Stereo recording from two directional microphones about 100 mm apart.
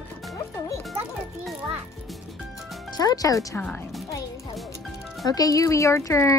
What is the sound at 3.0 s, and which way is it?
Speech, 40° left (ahead or behind).